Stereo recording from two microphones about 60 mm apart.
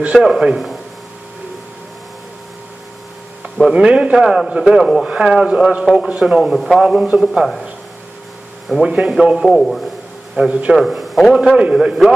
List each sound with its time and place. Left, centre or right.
0.0 s a man's voice: centre
3.7 s a man's voice: centre
6.5 s a man's voice: centre
6.8 s a man's voice: centre
8.8 s a man's voice: centre
9.4 s a man's voice: centre
10.3 s a man's voice: centre
10.8 s a man's voice: centre